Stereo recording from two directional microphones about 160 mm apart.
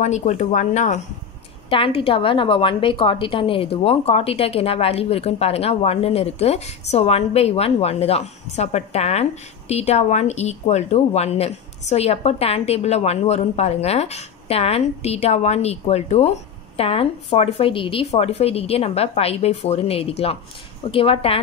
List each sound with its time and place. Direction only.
0.0 s speech: 45° left (ahead or behind)
1.7 s a woman's voice: 35° left (ahead or behind)